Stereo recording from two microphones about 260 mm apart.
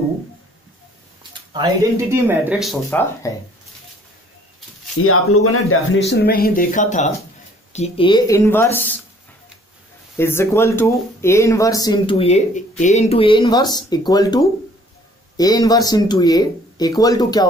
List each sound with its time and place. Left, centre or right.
1.3 s speech: centre
4.9 s speech: left; by 8.9 s centre
10.1 s speech: centre